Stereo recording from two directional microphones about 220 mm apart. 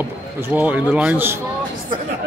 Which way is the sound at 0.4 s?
5° right (ahead or behind).